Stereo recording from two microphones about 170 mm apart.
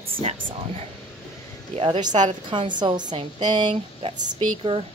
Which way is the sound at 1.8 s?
25° right (ahead or behind).